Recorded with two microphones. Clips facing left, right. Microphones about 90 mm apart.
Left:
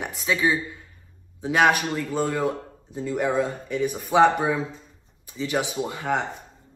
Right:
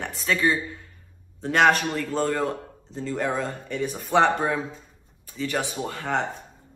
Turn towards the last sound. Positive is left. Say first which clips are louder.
# left 1 dB
turn(degrees=10)  # may be behind; listen again after turning